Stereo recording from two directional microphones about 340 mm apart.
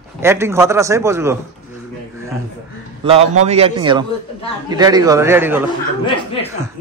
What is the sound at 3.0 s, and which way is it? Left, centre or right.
A man's voice, centre.